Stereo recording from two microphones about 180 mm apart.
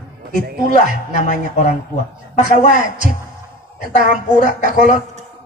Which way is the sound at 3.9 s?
40° left (ahead or behind).